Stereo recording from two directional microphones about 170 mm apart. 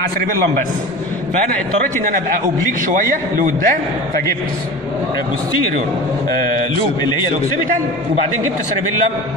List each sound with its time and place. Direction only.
2.9 s a man's voice: 55° right (ahead or behind)